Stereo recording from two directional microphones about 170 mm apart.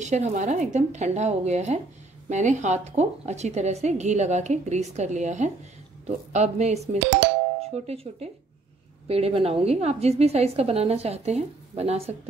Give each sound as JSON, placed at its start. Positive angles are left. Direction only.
{"t": 0.0, "sound": "a woman's voice", "side_deg": -45}